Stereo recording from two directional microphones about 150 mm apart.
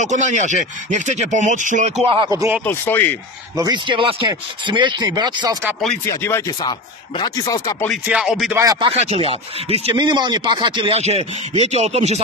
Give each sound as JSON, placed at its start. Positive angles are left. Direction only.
{"t": 0.0, "sound": "speech", "side_deg": -55}
{"t": 2.0, "sound": "speech", "side_deg": -35}
{"t": 2.3, "sound": "speech", "side_deg": -20}
{"t": 2.6, "sound": "speech", "side_deg": 15}
{"t": 3.5, "sound": "speech", "side_deg": -25}
{"t": 6.0, "sound": "speech", "side_deg": 15}
{"t": 8.1, "sound": "speech", "side_deg": -5}
{"t": 8.7, "sound": "speech", "side_deg": -40}